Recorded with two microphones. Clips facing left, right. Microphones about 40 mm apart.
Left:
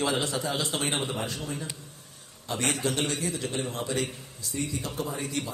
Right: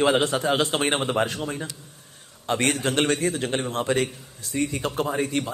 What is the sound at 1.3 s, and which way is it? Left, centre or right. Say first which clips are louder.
A man's voice: right 5 dB; right.